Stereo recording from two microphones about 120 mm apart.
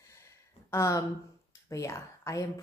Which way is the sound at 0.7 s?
25° left (ahead or behind).